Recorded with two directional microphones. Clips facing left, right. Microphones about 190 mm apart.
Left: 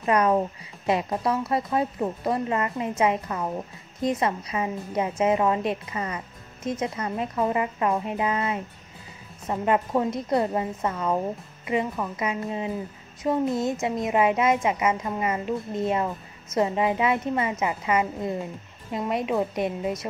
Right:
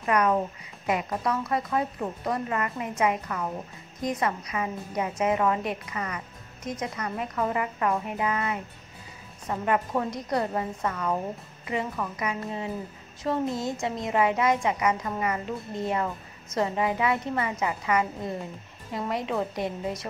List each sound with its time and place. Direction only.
0.0 s a woman's voice: 25° left (ahead or behind)